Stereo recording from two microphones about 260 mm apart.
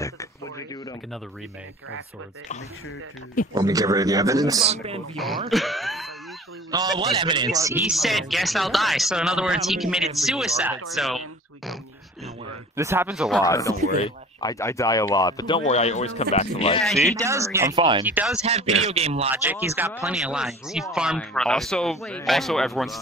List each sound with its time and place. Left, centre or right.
0.0 s a sound: centre
3.5 s speech: centre
5.1 s a man's voice: centre
6.7 s a man's voice: centre
11.0 s a sound: centre
12.7 s speech: centre
13.4 s speech: centre
17.0 s speech: centre
18.0 s a man's voice: centre
18.4 s a man's voice: right
19.3 s a man's voice: centre